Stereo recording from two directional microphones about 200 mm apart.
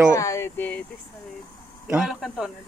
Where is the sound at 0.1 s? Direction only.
15° left (ahead or behind).